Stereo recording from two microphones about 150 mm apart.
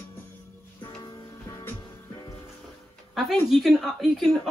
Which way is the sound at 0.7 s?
25° left (ahead or behind).